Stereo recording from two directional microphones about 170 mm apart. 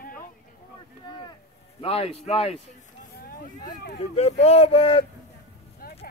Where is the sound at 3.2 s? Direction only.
55° left (ahead or behind).